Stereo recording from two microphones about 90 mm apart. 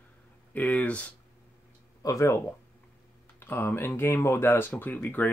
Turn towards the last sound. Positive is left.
turn(degrees=20)  # may be behind; listen again after turning